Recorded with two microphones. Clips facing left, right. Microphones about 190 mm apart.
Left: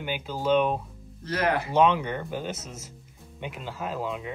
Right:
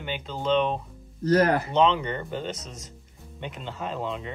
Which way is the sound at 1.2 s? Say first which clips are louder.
Right 6 dB; 40° right (ahead or behind).